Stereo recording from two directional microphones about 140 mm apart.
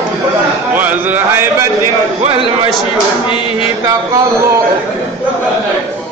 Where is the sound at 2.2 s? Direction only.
40° right (ahead or behind).